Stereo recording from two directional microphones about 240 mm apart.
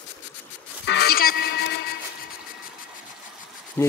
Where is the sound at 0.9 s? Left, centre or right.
Left.